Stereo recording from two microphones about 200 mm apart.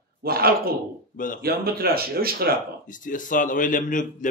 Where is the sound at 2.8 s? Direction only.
40° left (ahead or behind).